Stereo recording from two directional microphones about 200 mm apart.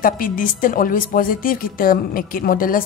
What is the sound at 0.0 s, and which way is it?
A woman's voice, 45° left (ahead or behind).